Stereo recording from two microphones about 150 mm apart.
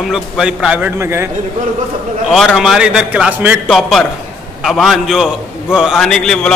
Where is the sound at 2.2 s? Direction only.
Centre (ahead or behind).